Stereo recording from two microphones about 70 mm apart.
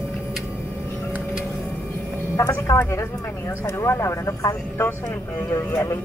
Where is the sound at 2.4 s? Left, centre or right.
Left.